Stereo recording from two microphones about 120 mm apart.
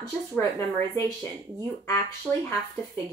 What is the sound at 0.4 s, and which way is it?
Speech, 20° left (ahead or behind).